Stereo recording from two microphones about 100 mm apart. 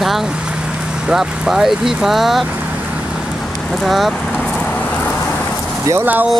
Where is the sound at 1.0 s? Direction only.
5° right (ahead or behind).